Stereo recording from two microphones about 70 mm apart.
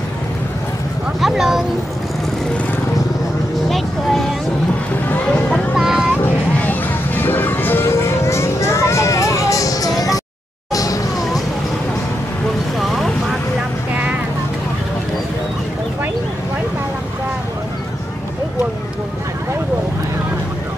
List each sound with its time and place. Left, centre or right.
1.2 s speech: centre
3.6 s vehicle: centre
5.8 s boat: centre
6.2 s music: left
12.7 s vehicle: centre